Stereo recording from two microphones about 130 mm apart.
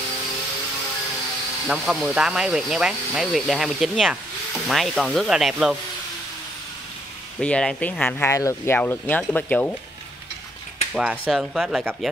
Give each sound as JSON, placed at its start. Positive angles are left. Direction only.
{"t": 1.7, "sound": "speech", "side_deg": 0}
{"t": 7.3, "sound": "speech", "side_deg": 5}
{"t": 11.0, "sound": "speech", "side_deg": 0}